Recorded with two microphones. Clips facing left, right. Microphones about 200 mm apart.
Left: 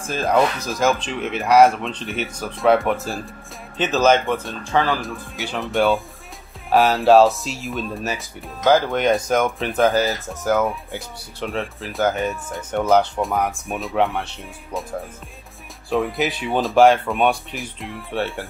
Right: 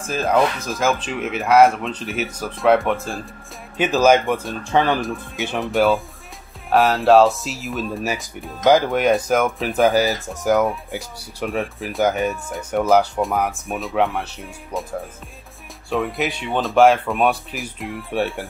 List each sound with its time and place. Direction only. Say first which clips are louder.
0.1 s speech: even; centre (ahead or behind)
3.7 s speech: right 2 dB; 10° right (ahead or behind)
5.0 s speech: right 4 dB; centre (ahead or behind)
12.3 s speech: right 1 dB; centre (ahead or behind)
15.9 s speech: left 1 dB; centre (ahead or behind)